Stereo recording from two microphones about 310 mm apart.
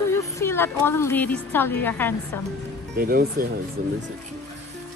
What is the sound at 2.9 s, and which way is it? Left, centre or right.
Speech, right.